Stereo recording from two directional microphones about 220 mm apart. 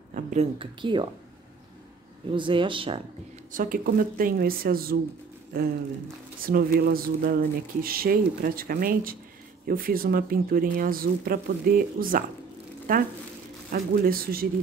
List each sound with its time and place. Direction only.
0.1 s speech: 30° right (ahead or behind)
2.3 s speech: 20° right (ahead or behind)
3.5 s speech: 40° right (ahead or behind)
6.4 s speech: 40° right (ahead or behind)